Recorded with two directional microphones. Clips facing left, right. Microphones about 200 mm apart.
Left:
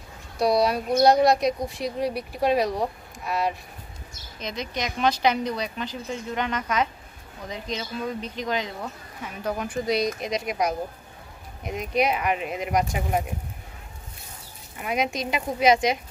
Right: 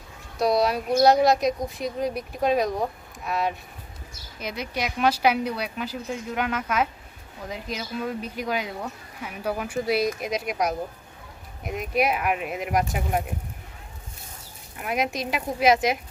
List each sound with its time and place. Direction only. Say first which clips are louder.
0.4 s a woman's voice: left 1 dB; centre (ahead or behind)
14.8 s speech: even; centre (ahead or behind)